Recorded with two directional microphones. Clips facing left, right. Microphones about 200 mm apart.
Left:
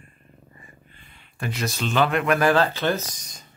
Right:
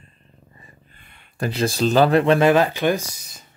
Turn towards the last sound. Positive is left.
turn(degrees=-5)  # may be behind; listen again after turning